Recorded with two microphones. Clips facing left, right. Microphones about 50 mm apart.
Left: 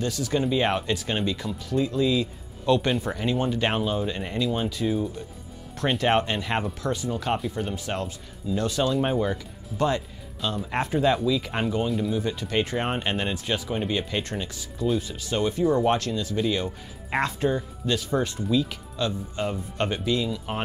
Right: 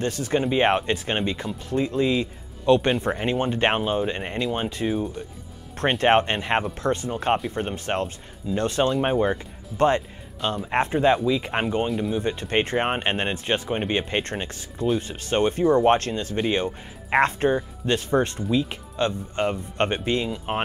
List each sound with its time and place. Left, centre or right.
0.0 s speech: right
5.9 s speech: right